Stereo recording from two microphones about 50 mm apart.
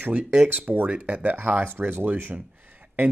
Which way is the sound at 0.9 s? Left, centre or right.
Right.